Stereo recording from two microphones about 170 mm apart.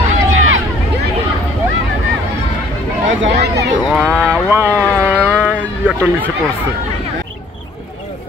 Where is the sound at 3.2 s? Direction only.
75° right (ahead or behind).